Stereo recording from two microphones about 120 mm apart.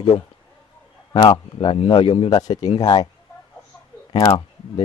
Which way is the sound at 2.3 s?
35° left (ahead or behind).